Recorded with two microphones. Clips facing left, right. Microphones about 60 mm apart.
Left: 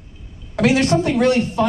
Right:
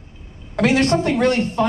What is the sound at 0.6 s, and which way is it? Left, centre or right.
Speech, centre.